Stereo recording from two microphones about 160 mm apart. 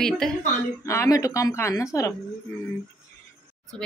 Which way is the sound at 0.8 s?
20° left (ahead or behind).